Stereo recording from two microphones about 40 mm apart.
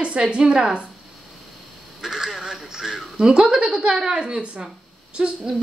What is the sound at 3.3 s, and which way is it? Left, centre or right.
A woman's voice, right.